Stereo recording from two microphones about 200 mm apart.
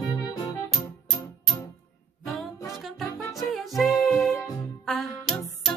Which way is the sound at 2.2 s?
Centre (ahead or behind).